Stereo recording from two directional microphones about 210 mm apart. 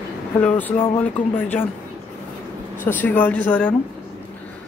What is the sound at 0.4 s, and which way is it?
Speech, 5° left (ahead or behind).